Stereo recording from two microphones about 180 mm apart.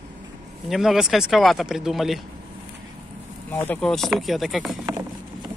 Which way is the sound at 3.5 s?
10° left (ahead or behind).